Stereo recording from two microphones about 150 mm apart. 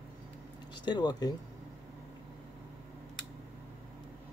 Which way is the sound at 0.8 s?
30° left (ahead or behind).